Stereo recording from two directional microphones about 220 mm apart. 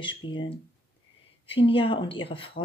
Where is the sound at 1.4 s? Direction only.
25° left (ahead or behind).